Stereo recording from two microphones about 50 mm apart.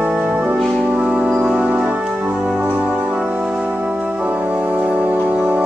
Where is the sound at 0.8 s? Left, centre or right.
Right.